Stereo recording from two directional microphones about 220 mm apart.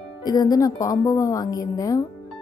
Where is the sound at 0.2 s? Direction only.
15° left (ahead or behind).